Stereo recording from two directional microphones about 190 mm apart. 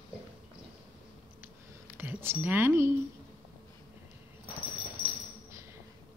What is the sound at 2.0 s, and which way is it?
Speech, 10° right (ahead or behind).